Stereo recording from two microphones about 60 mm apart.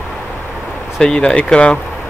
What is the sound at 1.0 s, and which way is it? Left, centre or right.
Speech, centre.